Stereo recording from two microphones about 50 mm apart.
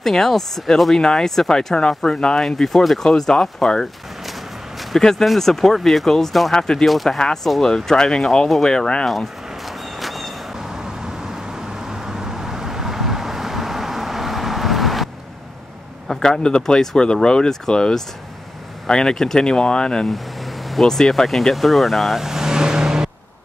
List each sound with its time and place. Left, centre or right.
0.0 s speech: centre
0.9 s speech: centre
4.3 s walk: centre
5.2 s speech: centre
9.0 s a sound: centre
11.9 s vehicle: centre
16.1 s speech: centre
20.1 s vehicle: centre
20.8 s speech: centre